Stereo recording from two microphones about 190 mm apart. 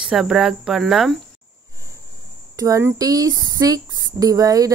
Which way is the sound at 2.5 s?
15° right (ahead or behind).